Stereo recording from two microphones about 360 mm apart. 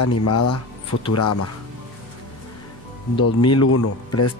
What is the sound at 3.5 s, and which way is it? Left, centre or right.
Speech, left.